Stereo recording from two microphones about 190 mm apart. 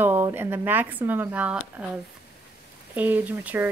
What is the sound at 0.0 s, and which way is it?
Speech, 10° right (ahead or behind).